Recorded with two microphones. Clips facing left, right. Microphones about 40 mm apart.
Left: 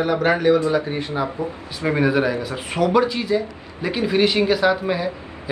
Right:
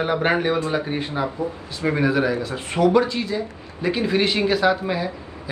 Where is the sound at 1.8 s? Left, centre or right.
Left.